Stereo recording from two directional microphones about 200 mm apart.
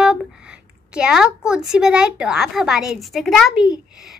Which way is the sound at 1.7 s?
5° right (ahead or behind).